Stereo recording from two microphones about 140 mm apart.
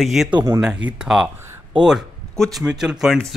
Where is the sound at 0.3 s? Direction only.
25° right (ahead or behind).